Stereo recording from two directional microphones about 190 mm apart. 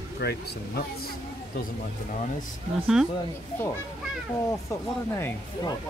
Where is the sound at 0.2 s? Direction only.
55° left (ahead or behind).